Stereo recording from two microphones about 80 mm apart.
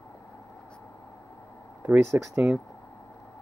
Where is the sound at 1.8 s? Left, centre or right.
Right.